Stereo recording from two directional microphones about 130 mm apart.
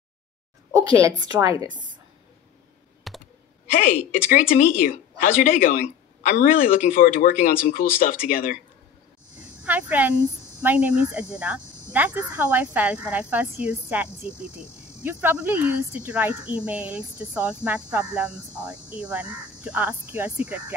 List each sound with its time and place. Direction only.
1.0 s a woman's voice: 25° right (ahead or behind)
3.1 s computer keyboard: centre (ahead or behind)
4.3 s speech: 90° left
9.6 s a woman's voice: 10° right (ahead or behind)